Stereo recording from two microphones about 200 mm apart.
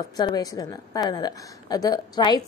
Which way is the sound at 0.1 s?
20° left (ahead or behind).